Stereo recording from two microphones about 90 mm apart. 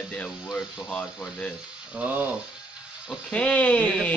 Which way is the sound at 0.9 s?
20° left (ahead or behind).